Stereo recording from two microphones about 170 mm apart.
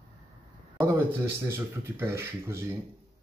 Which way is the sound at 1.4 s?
15° right (ahead or behind).